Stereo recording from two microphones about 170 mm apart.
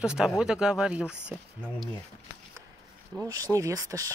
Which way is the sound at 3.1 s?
15° right (ahead or behind).